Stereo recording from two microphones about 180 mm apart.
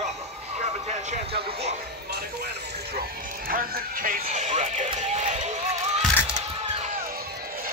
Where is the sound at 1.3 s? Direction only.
35° right (ahead or behind).